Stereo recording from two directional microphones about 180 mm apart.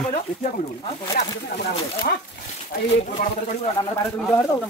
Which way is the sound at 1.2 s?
60° left (ahead or behind).